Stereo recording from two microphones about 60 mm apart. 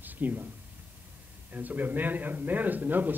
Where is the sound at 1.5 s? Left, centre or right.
Right.